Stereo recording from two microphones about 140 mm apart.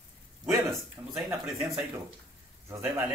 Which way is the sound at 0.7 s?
Centre (ahead or behind).